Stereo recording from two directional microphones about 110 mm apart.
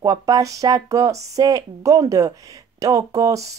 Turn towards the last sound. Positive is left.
turn(degrees=-30)  # may be behind; listen again after turning